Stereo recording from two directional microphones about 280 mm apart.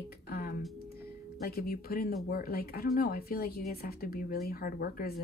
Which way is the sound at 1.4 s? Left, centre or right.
Left.